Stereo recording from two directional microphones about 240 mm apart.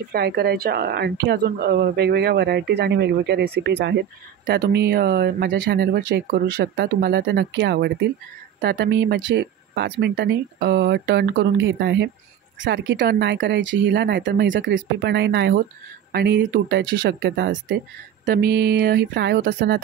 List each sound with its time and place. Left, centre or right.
0.1 s speech: right